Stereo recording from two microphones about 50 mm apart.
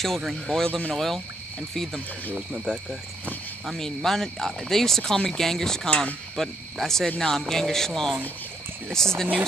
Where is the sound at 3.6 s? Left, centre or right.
Centre.